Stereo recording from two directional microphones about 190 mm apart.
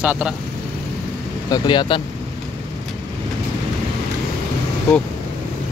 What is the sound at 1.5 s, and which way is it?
Speech, 25° left (ahead or behind).